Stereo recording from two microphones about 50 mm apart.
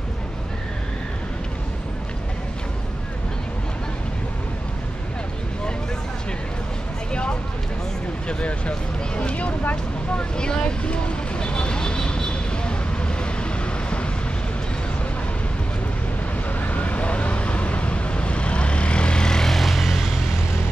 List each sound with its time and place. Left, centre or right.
7.1 s vehicle: centre
8.3 s a sound: left
10.1 s vehicle: centre
16.6 s vehicle: left; by 20.1 s centre